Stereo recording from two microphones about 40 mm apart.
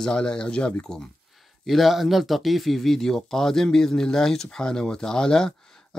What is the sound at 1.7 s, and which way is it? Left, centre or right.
Speech, centre.